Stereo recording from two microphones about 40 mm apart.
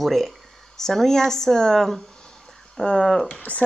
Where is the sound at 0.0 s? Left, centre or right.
Centre.